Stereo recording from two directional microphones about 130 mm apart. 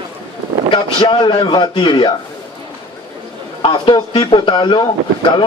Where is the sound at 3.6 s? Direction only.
40° left (ahead or behind).